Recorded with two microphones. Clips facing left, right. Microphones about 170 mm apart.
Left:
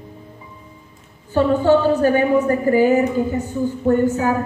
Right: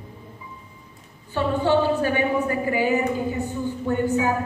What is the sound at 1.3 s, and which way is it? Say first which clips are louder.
A woman's voice: left 6 dB; 45° left (ahead or behind).